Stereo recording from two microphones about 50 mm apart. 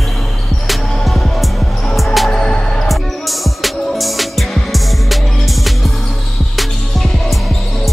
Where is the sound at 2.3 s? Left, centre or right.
Centre.